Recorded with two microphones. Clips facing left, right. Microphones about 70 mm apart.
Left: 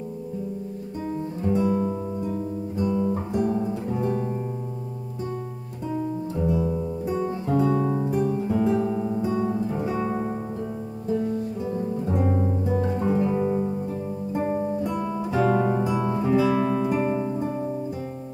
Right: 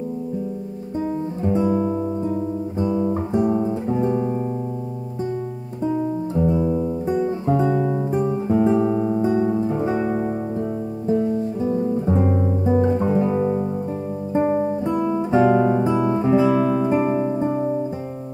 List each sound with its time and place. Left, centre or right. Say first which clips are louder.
1.4 s guitar: right 3 dB; right
5.9 s guitar: right 5 dB; centre
7.2 s music: right 3 dB; right
8.1 s guitar: right 3 dB; right
10.0 s music: right 4 dB; centre
12.3 s guitar: right 3 dB; centre
12.6 s music: right 8 dB; right
14.3 s guitar: right 7 dB; right
14.6 s music: right 5 dB; right
15.0 s music: right 7 dB; centre
15.3 s guitar: right 5 dB; centre
16.6 s music: right 4 dB; centre
16.9 s music: right 5 dB; right